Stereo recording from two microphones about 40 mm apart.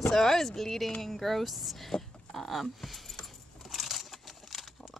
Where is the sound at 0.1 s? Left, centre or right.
Centre.